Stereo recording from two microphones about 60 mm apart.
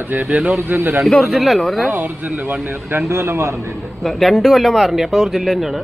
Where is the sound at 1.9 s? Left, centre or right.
Right.